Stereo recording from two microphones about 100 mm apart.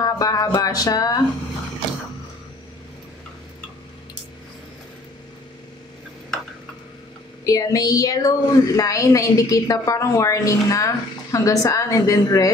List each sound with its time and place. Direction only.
0.0 s music: 40° left (ahead or behind)
0.6 s a woman's voice: 40° left (ahead or behind)
7.4 s a woman's voice: 35° left (ahead or behind)